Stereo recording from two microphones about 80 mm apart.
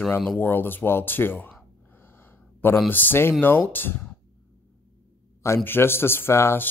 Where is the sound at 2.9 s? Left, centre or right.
Left.